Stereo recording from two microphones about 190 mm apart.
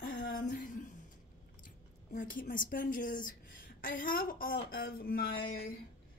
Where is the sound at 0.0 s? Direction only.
50° left (ahead or behind).